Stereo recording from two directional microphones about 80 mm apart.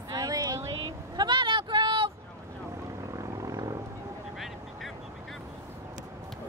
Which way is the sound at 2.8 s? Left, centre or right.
Right.